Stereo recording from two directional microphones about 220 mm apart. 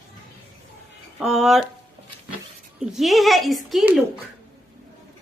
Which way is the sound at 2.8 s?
Centre (ahead or behind).